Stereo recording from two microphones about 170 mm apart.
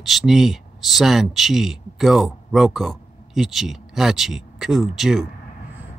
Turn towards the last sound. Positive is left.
turn(degrees=-5)  # may be behind; listen again after turning